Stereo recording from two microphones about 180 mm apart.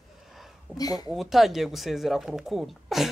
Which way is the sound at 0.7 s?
20° left (ahead or behind).